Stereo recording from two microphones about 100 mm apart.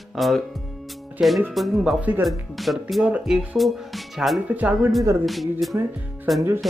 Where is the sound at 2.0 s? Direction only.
15° right (ahead or behind).